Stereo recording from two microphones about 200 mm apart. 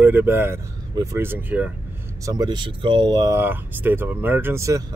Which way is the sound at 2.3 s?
20° right (ahead or behind).